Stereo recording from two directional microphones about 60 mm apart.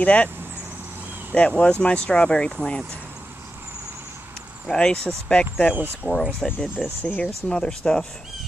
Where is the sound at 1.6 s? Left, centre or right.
Left.